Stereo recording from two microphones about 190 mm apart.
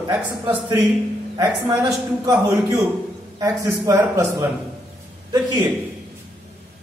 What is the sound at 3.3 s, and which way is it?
A man's voice, 15° right (ahead or behind).